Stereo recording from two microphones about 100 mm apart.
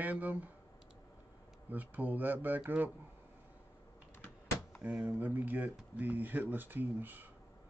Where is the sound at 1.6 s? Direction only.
15° right (ahead or behind).